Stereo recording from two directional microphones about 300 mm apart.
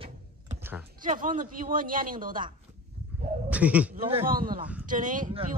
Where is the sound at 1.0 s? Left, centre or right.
Right.